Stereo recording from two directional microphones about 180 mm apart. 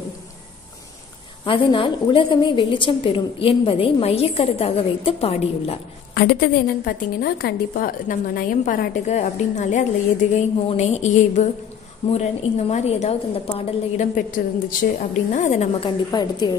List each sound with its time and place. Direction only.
1.4 s a woman's voice: 30° left (ahead or behind)
6.1 s a woman's voice: 60° left (ahead or behind); by 14.0 s 35° left (ahead or behind)
14.1 s a woman's voice: 50° left (ahead or behind)
16.1 s a woman's voice: 25° left (ahead or behind)